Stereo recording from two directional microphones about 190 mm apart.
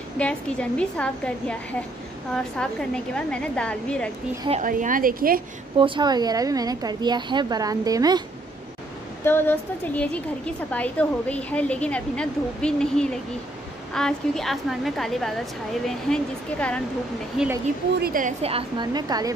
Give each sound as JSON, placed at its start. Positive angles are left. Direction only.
{"t": 0.2, "sound": "a woman's voice", "side_deg": 5}
{"t": 4.5, "sound": "a woman's voice", "side_deg": -40}
{"t": 5.8, "sound": "a woman's voice", "side_deg": -25}
{"t": 9.2, "sound": "a woman's voice", "side_deg": 10}
{"t": 18.0, "sound": "a woman's voice", "side_deg": -45}
{"t": 18.4, "sound": "a woman's voice", "side_deg": -30}